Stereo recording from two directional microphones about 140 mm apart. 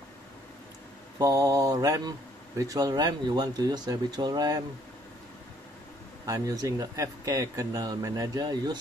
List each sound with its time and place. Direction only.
1.1 s speech: 25° right (ahead or behind)
6.2 s speech: 25° right (ahead or behind)